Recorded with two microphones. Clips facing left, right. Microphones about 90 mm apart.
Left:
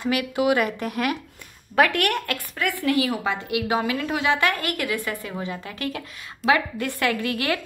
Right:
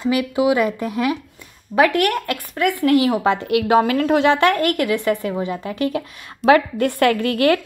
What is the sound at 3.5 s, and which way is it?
A woman's voice, 55° right (ahead or behind).